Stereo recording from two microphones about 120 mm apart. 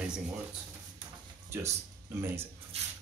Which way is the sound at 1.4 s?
20° right (ahead or behind).